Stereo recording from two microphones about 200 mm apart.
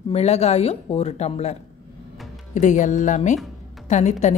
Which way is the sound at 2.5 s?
40° left (ahead or behind).